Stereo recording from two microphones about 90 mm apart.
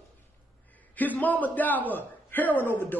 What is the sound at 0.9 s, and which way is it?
Speech, 20° left (ahead or behind).